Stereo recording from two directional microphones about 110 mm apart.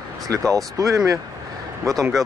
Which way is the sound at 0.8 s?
30° right (ahead or behind).